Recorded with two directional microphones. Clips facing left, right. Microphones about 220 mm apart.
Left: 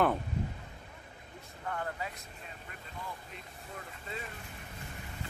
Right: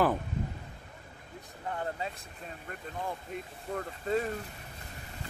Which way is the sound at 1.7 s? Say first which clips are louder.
Right 2 dB; 25° right (ahead or behind).